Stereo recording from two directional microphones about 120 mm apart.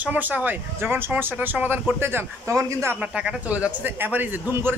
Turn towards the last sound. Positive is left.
turn(degrees=-15)  # may be behind; listen again after turning